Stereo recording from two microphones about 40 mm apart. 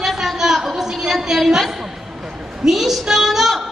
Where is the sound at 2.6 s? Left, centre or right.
Centre.